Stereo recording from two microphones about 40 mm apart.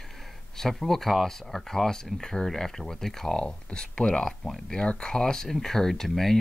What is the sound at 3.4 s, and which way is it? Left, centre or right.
Speech, left.